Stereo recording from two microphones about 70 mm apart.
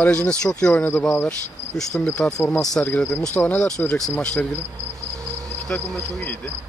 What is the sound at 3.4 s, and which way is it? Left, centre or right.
Speech, left.